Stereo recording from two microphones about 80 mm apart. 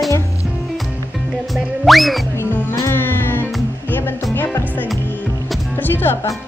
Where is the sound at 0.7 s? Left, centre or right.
Centre.